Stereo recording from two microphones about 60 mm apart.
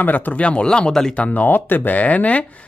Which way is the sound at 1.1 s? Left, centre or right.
Left.